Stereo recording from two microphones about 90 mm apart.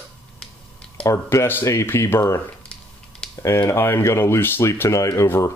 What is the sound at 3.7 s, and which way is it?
Speech, 25° left (ahead or behind).